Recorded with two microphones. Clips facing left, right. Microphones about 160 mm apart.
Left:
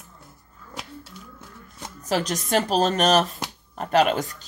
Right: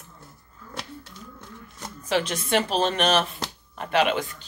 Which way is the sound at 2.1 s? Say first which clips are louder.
Left 1 dB; 40° left (ahead or behind).